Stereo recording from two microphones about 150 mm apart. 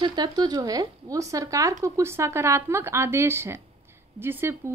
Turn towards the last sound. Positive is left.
turn(degrees=-15)  # may be behind; listen again after turning